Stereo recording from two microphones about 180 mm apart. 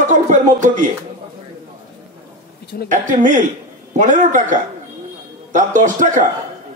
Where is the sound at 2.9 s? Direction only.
45° right (ahead or behind).